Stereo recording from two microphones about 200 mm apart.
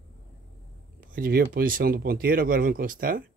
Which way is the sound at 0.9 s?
45° right (ahead or behind).